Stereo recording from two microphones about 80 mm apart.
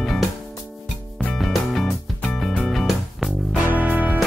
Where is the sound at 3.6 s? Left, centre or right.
Right.